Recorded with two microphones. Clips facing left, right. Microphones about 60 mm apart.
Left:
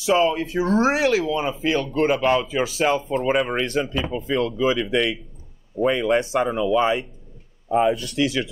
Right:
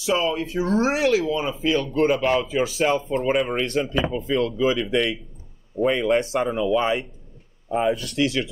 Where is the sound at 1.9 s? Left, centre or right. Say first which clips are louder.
Left 1 dB; left.